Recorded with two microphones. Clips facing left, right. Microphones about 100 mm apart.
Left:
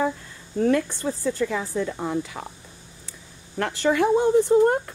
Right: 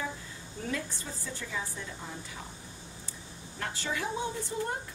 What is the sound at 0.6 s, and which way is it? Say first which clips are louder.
Speech: left 15 dB; 65° left (ahead or behind).